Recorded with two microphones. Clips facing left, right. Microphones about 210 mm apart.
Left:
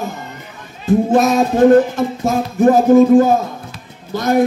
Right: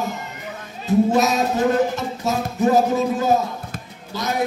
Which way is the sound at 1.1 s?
50° left (ahead or behind).